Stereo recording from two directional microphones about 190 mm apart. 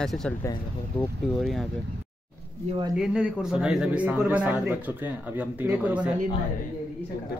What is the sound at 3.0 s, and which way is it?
Speech, 5° right (ahead or behind).